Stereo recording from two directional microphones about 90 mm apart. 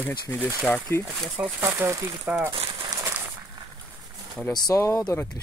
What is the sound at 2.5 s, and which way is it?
Crumpling, 90° right.